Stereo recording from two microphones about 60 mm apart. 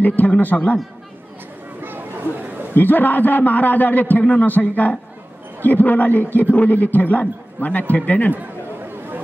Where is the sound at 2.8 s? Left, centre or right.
Left.